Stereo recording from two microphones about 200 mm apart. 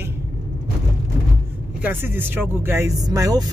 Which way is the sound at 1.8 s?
10° right (ahead or behind).